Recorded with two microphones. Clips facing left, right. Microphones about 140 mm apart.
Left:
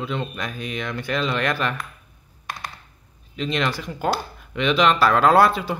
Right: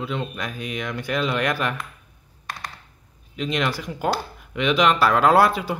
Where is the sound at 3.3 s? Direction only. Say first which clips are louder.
Even; 10° right (ahead or behind).